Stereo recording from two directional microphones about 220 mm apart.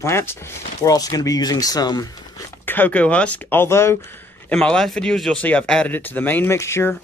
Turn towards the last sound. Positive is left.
turn(degrees=10)  # may be behind; listen again after turning